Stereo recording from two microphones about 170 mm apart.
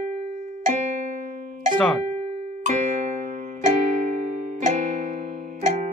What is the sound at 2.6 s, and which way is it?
Music, 50° right (ahead or behind).